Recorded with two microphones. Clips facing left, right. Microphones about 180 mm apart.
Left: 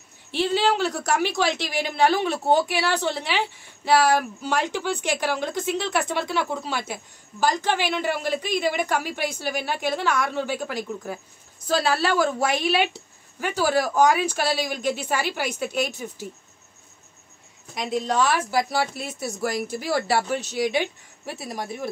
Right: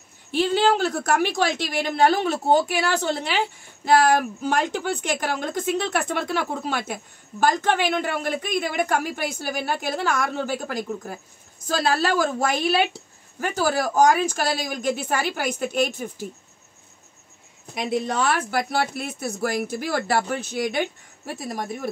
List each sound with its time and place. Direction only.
0.3 s a woman's voice: 50° right (ahead or behind)
17.7 s a woman's voice: 55° right (ahead or behind)